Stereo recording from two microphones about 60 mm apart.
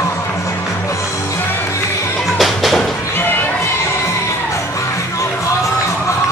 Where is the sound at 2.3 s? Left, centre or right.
Centre.